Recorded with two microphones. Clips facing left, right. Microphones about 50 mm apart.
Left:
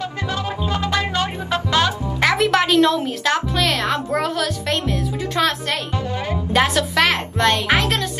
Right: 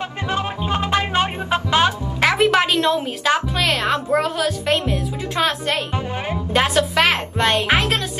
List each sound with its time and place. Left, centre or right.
0.0 s music: right
2.5 s a woman's voice: centre
5.9 s speech: right
6.5 s a woman's voice: centre